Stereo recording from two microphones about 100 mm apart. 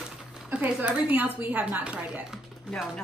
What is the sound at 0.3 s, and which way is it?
Speech, 10° right (ahead or behind).